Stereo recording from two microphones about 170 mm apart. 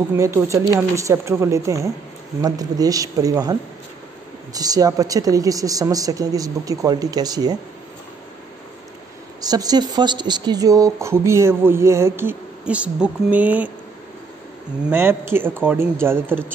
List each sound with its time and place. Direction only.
0.1 s a woman's voice: 15° right (ahead or behind)
4.6 s a woman's voice: 20° right (ahead or behind)
9.4 s speech: 25° right (ahead or behind)
14.9 s speech: 15° right (ahead or behind)